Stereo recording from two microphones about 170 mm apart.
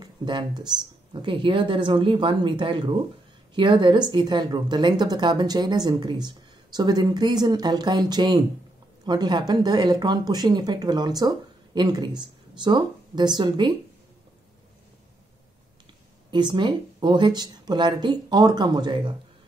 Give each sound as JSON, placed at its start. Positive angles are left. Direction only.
{"t": 0.0, "sound": "speech", "side_deg": -25}
{"t": 16.3, "sound": "speech", "side_deg": -25}